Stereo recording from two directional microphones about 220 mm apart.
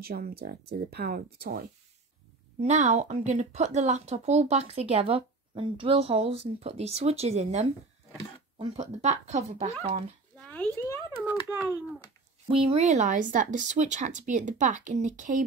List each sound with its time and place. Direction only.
0.0 s speech: 45° right (ahead or behind)
2.6 s speech: 30° right (ahead or behind)
10.4 s a sound: 5° left (ahead or behind)
11.4 s a child's voice: 10° right (ahead or behind)
12.4 s speech: 25° right (ahead or behind)